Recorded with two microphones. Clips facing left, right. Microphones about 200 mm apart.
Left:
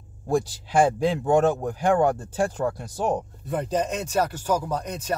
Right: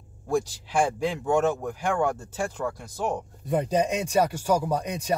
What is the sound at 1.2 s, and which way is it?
Speech, 35° left (ahead or behind).